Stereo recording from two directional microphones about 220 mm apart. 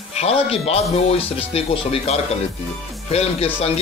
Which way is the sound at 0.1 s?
30° left (ahead or behind).